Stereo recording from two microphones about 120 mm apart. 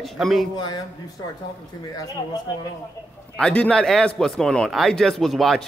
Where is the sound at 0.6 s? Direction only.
40° left (ahead or behind).